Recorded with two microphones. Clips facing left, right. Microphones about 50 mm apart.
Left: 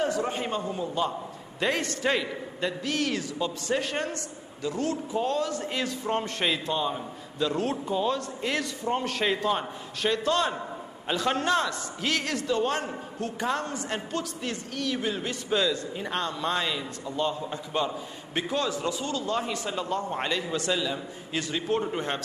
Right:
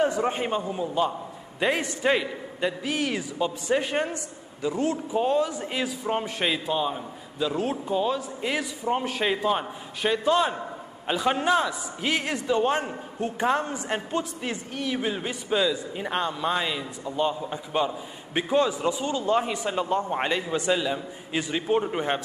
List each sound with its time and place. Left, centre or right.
0.0 s a man's voice: right